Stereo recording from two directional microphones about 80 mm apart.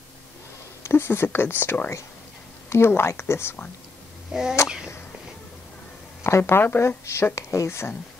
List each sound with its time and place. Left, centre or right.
0.8 s speech: left
4.3 s speech: centre
6.2 s speech: left